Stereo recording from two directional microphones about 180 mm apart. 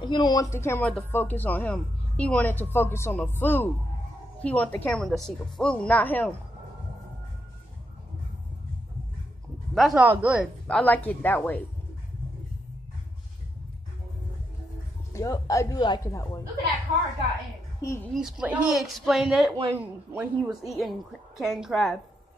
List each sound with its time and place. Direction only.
0.0 s speech: 25° left (ahead or behind); by 6.3 s 10° left (ahead or behind)
9.8 s speech: centre (ahead or behind)
10.7 s speech: 10° left (ahead or behind)
15.1 s speech: 20° left (ahead or behind)
17.8 s speech: 15° left (ahead or behind)
18.1 s speech: 5° right (ahead or behind)